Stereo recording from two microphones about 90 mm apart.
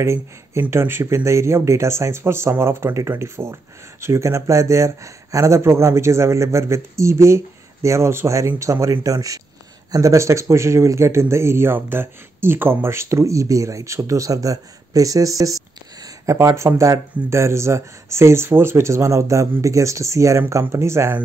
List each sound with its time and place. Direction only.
0.0 s speech: 30° right (ahead or behind)